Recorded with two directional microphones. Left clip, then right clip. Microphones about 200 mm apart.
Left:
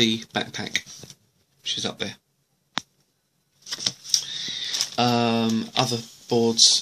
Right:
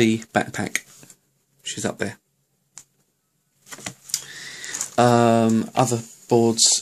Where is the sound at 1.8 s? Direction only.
50° right (ahead or behind).